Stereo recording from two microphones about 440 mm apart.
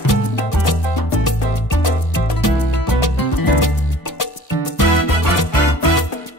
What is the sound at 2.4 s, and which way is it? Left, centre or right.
Music, left.